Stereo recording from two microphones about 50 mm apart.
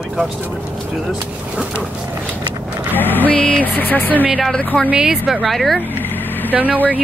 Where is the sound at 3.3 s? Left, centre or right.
Left.